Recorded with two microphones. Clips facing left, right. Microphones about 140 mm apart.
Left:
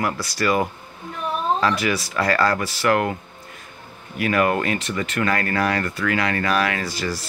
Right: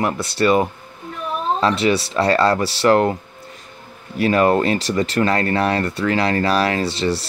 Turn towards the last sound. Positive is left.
turn(degrees=-30)  # may be behind; listen again after turning